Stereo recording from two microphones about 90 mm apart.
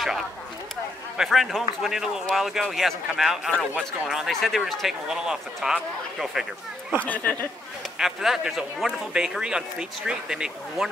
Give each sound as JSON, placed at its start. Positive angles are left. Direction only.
{"t": 1.1, "sound": "speech", "side_deg": 0}
{"t": 7.0, "sound": "speech", "side_deg": 15}
{"t": 8.0, "sound": "speech", "side_deg": -5}